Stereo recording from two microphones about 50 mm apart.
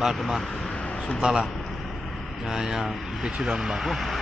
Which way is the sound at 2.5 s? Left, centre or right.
Centre.